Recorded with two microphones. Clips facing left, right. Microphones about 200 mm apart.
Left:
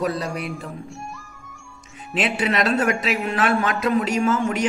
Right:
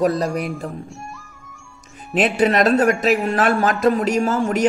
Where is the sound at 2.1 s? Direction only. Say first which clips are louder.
Right 6 dB; 40° right (ahead or behind).